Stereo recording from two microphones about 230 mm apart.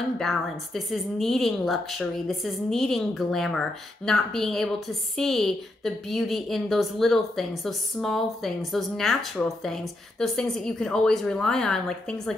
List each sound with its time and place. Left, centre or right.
0.2 s a woman's voice: centre